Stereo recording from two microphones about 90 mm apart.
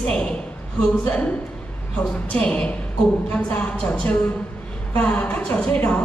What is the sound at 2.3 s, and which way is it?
A woman's voice, 15° left (ahead or behind).